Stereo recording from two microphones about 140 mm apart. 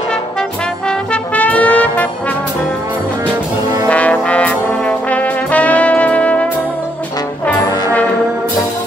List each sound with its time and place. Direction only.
0.1 s brass instrument: 5° left (ahead or behind)
3.9 s trombone: 10° left (ahead or behind)